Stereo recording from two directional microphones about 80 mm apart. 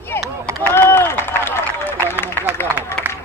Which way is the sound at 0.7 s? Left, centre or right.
Left.